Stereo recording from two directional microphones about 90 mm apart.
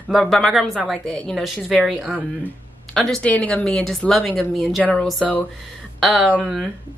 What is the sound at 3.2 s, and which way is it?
A woman's voice, 15° left (ahead or behind).